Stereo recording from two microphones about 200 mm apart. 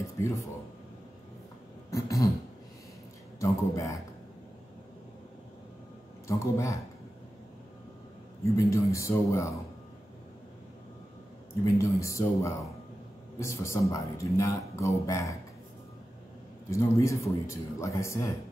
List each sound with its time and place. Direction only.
0.0 s a sound: 15° left (ahead or behind)
1.9 s throat clearing: 15° left (ahead or behind)
3.3 s speech: 15° left (ahead or behind)
6.2 s speech: 15° left (ahead or behind)
8.5 s speech: 15° left (ahead or behind)
12.0 s speech: 15° left (ahead or behind)
16.7 s speech: 15° left (ahead or behind)